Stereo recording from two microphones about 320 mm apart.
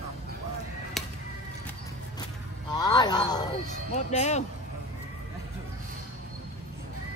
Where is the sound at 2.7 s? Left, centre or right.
Centre.